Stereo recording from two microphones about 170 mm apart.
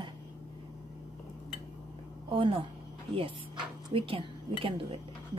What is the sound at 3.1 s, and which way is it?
A woman's voice, 30° right (ahead or behind).